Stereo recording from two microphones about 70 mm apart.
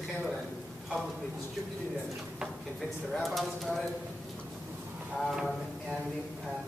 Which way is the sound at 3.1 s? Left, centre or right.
Centre.